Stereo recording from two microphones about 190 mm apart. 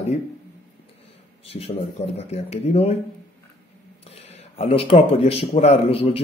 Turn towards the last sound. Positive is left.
turn(degrees=30)  # may be behind; listen again after turning